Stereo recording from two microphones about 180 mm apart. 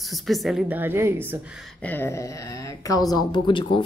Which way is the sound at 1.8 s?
10° left (ahead or behind).